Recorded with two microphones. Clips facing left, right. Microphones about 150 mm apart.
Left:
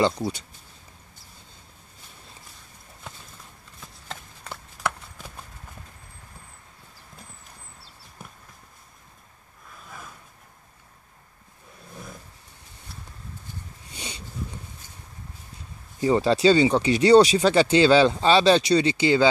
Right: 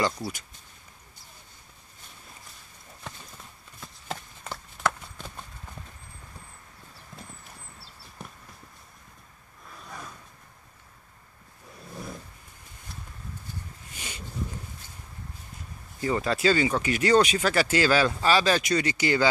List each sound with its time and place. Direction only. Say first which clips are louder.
0.0 s speech: left 5 dB; 25° left (ahead or behind)
4.8 s clip-clop: right 1 dB; 10° left (ahead or behind)
9.8 s a sound: right 1 dB; 5° left (ahead or behind)
16.0 s speech: left 6 dB; 30° left (ahead or behind)